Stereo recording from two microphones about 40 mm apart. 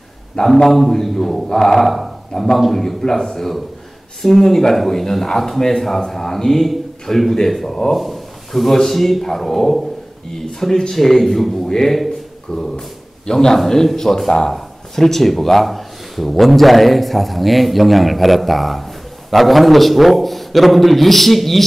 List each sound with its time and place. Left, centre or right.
0.7 s a man's voice: centre
12.5 s a sound: centre
13.3 s speech: centre